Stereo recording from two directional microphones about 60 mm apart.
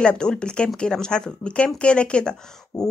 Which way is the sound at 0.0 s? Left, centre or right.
Centre.